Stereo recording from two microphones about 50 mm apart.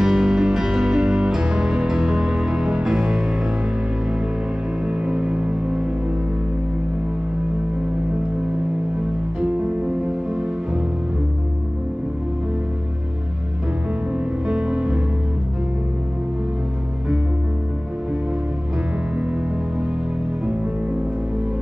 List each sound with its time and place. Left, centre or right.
0.0 s music: centre
4.8 s music: centre
9.4 s music: centre
14.5 s music: centre